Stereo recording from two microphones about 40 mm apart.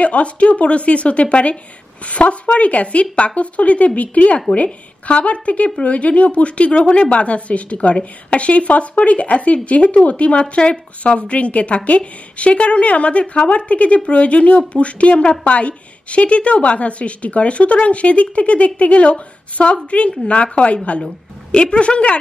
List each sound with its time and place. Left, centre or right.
0.0 s a woman's voice: left